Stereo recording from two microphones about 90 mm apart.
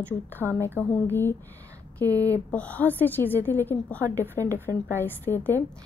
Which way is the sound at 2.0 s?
40° right (ahead or behind).